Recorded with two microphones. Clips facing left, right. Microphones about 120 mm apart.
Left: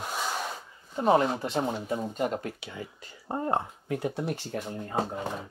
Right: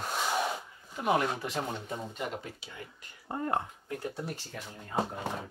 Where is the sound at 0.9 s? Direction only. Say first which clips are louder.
Left 5 dB; 30° left (ahead or behind).